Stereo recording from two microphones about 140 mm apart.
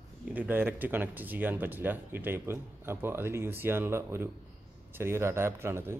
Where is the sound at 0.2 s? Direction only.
10° right (ahead or behind).